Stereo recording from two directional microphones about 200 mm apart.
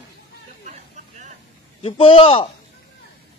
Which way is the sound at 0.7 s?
35° right (ahead or behind).